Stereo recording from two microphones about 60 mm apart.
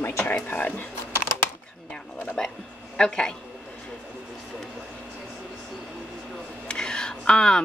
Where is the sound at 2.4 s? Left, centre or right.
Centre.